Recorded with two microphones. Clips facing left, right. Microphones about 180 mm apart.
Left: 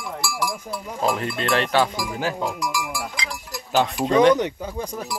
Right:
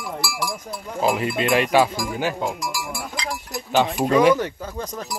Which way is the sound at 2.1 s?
5° right (ahead or behind).